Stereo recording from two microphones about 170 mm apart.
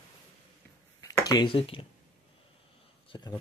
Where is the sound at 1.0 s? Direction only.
20° left (ahead or behind).